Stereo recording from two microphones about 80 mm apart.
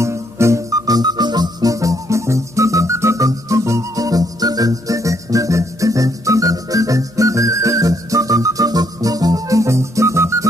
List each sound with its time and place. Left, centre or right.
0.0 s music: right